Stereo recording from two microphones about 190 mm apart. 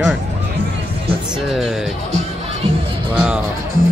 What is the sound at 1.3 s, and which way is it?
Speech, centre (ahead or behind).